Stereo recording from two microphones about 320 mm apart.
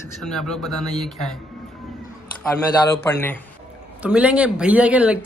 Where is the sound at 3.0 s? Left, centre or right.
Centre.